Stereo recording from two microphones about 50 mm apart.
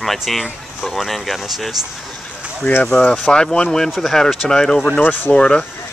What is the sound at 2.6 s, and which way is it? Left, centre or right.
Speech, left.